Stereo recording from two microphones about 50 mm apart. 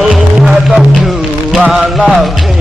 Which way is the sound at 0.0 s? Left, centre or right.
Centre.